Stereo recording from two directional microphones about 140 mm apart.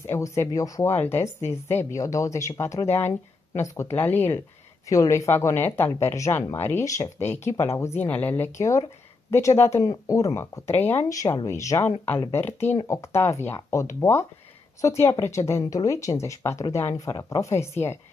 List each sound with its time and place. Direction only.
0.0 s speech: 20° left (ahead or behind)